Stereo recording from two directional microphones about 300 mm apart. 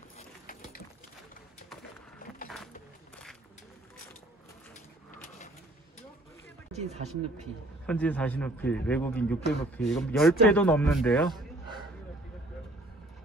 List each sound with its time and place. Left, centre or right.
6.7 s speech: right
7.8 s speech: centre